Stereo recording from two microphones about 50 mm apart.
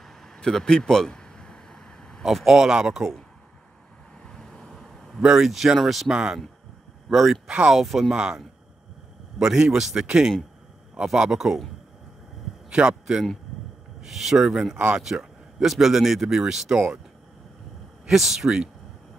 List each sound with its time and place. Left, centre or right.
0.4 s a sound: centre
2.2 s a man's voice: centre
4.3 s a sound: centre
5.2 s a man's voice: centre
8.1 s a man's voice: centre
9.4 s a man's voice: centre
12.6 s a man's voice: centre
18.0 s a man's voice: centre